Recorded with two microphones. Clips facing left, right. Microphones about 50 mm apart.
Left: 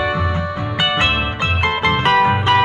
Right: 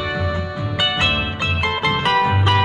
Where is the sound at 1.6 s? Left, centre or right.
Left.